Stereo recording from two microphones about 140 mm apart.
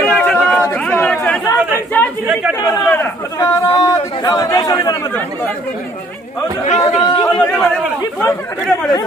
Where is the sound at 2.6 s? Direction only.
20° left (ahead or behind).